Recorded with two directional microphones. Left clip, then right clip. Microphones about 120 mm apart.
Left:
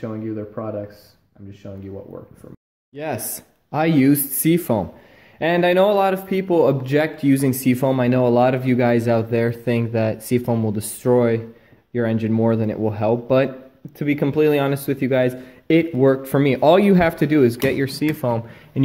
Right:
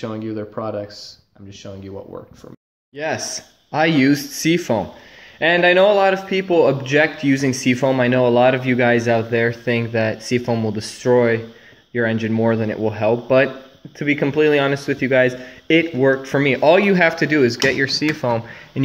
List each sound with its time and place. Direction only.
0.0 s speech: 15° right (ahead or behind)
3.7 s speech: 20° left (ahead or behind)
5.4 s speech: 40° left (ahead or behind)
5.9 s speech: 25° left (ahead or behind)
9.1 s speech: 35° left (ahead or behind)
16.6 s speech: 45° left (ahead or behind)
17.3 s speech: 35° left (ahead or behind)
18.2 s speech: 15° left (ahead or behind)